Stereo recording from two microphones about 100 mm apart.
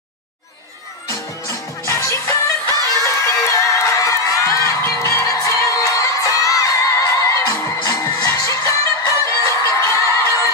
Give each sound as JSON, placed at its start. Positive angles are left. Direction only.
{"t": 1.9, "sound": "music", "side_deg": 30}